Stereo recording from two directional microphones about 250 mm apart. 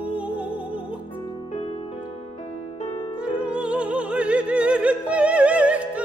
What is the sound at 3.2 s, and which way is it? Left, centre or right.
Music, centre.